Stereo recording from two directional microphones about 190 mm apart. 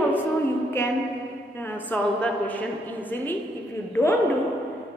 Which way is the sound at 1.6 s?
10° left (ahead or behind).